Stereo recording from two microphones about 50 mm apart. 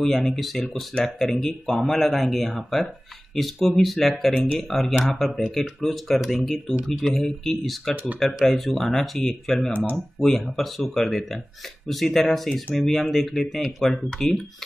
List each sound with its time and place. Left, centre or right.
0.0 s speech: centre
4.3 s speech: left
4.6 s speech: centre
7.9 s speech: right
8.4 s speech: centre